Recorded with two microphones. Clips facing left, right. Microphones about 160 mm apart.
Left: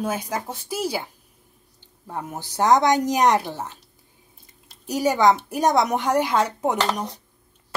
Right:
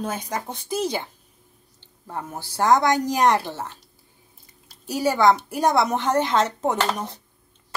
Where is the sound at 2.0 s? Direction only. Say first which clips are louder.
Left 1 dB; 15° left (ahead or behind).